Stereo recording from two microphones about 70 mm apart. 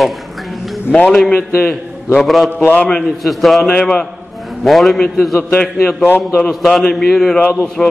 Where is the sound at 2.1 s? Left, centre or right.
Centre.